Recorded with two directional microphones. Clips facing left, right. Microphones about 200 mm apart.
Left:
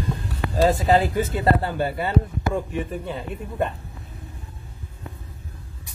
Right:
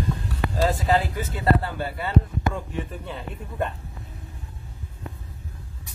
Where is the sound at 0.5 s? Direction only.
20° left (ahead or behind).